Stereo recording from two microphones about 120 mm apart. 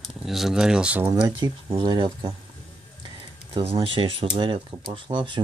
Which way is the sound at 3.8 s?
45° right (ahead or behind).